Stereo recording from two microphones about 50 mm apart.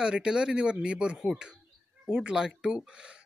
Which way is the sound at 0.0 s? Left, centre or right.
Centre.